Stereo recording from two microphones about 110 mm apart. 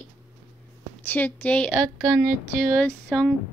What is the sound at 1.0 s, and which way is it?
A woman's voice, 15° left (ahead or behind).